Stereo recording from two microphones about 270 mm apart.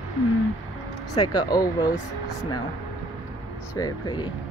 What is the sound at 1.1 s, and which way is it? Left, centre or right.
Speech, centre.